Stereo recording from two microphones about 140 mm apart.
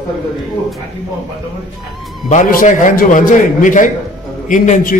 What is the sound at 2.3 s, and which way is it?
A man's voice, 75° left (ahead or behind).